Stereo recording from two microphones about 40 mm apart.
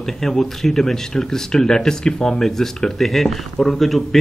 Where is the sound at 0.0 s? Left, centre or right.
Centre.